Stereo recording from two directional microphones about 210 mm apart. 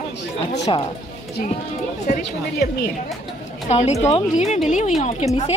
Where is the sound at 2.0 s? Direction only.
40° left (ahead or behind).